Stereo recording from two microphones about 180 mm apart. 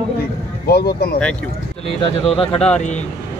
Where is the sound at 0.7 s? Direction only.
60° left (ahead or behind).